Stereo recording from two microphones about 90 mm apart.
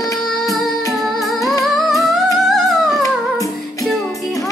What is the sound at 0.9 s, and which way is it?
Humming, centre (ahead or behind).